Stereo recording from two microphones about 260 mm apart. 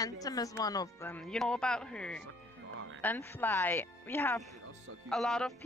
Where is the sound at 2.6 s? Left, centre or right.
Right.